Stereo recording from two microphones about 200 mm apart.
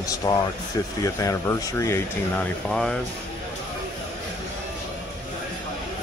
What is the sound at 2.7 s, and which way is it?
Speech, centre (ahead or behind).